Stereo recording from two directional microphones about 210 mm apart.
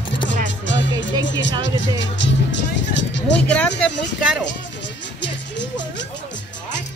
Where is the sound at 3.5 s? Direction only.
5° left (ahead or behind).